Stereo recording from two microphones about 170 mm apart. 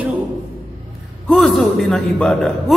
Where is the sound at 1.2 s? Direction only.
Centre (ahead or behind).